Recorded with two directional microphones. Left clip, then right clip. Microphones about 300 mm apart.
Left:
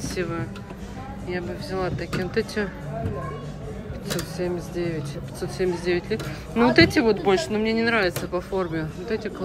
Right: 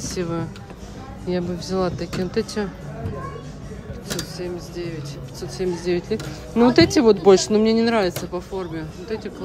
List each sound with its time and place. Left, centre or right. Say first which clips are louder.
0.1 s speech: right 2 dB; centre
4.1 s speech: left 1 dB; centre
8.1 s speech: left 1 dB; centre